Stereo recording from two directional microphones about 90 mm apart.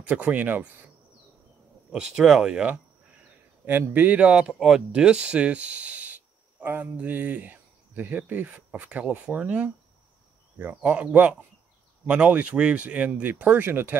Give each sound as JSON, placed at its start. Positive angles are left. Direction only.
{"t": 0.0, "sound": "speech", "side_deg": -15}
{"t": 1.9, "sound": "speech", "side_deg": -5}